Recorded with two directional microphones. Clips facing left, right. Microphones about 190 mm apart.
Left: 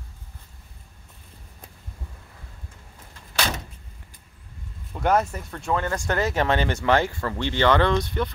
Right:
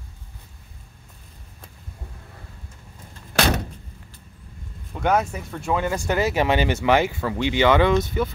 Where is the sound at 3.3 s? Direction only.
60° right (ahead or behind).